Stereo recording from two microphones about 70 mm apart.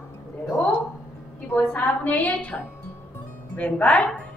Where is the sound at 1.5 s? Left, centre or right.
Left.